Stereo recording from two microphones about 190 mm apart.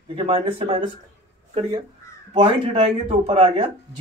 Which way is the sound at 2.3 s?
25° right (ahead or behind).